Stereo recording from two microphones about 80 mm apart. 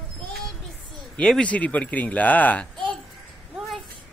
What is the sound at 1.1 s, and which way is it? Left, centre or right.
Speech, centre.